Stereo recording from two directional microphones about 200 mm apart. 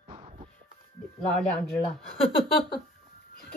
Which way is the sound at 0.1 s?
30° right (ahead or behind).